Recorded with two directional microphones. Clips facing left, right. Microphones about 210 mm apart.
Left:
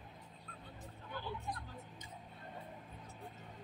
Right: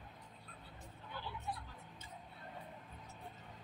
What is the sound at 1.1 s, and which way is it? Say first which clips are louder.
Hubbub: left 3 dB; 45° left (ahead or behind).